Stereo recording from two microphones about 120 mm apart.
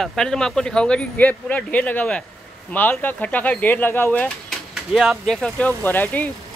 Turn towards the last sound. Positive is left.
turn(degrees=15)  # may be behind; listen again after turning